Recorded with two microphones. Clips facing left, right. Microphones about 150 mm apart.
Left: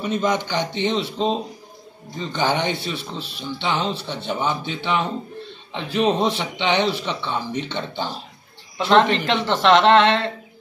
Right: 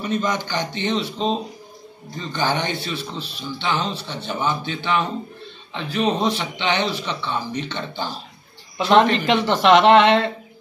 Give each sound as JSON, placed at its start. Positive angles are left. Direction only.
{"t": 0.0, "sound": "speech", "side_deg": 20}
{"t": 8.7, "sound": "speech", "side_deg": -15}